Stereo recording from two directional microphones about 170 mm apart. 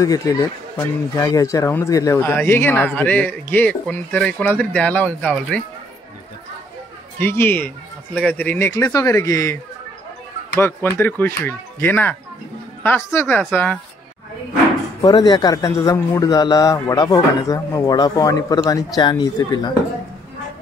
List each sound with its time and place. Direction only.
0.0 s speech: 20° left (ahead or behind)
7.2 s speech: 15° left (ahead or behind)
10.6 s speech: 10° left (ahead or behind)
15.0 s a man's voice: 25° left (ahead or behind)